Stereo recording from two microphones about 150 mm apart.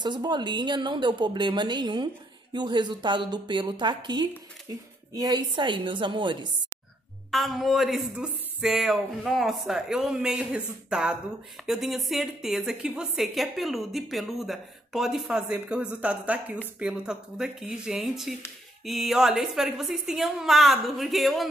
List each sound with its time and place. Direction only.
0.0 s a woman's voice: 30° right (ahead or behind)
7.2 s a woman's voice: centre (ahead or behind)